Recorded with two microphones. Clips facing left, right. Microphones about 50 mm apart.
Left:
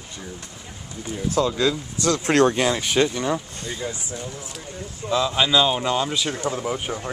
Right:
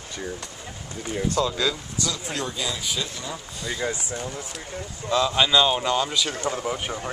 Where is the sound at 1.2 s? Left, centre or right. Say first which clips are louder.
Left 4 dB; centre.